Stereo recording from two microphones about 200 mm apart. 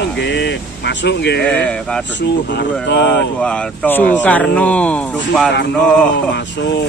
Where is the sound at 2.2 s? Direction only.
60° left (ahead or behind).